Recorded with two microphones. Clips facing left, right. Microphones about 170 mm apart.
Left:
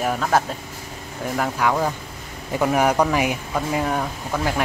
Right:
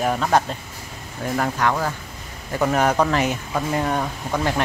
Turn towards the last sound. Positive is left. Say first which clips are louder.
# right 1 dB
turn(degrees=5)  # may be behind; listen again after turning